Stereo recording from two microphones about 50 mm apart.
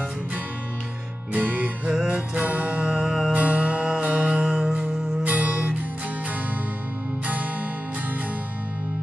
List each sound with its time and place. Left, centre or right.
1.3 s music: right
1.9 s music: centre
2.4 s music: right
2.8 s music: centre
3.3 s music: right
4.4 s music: centre
5.2 s music: right